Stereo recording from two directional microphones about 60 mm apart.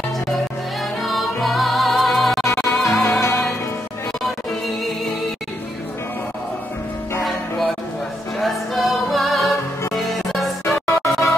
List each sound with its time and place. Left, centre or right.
1.0 s music: centre
2.9 s music: left
7.2 s music: centre
10.9 s music: left